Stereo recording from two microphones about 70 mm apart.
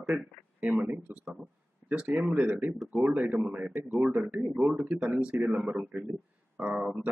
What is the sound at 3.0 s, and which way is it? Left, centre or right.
Speech, right.